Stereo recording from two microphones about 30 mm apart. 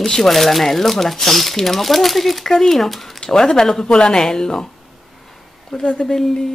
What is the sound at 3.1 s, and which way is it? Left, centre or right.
Speech, centre.